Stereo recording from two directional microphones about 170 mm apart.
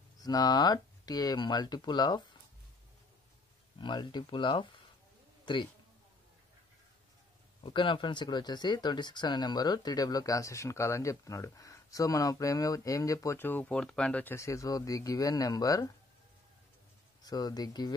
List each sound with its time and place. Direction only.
0.2 s speech: 25° left (ahead or behind)
3.7 s a man's voice: 25° left (ahead or behind)
7.6 s speech: 30° left (ahead or behind)
17.2 s speech: 25° left (ahead or behind)